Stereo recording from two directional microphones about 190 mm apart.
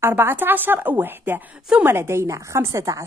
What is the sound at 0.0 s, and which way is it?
A woman's voice, 10° right (ahead or behind).